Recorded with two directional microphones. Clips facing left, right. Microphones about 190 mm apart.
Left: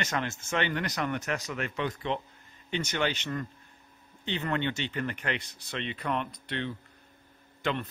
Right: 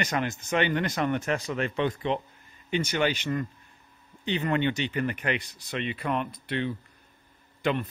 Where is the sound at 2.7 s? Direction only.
10° right (ahead or behind).